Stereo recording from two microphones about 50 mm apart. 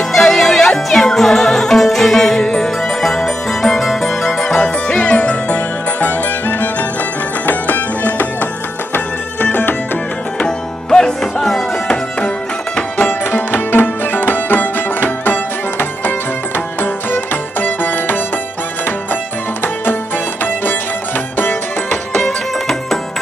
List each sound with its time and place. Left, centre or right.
0.1 s music: centre; by 8.5 s left
8.9 s music: left
10.4 s music: centre
12.9 s music: left
19.6 s music: left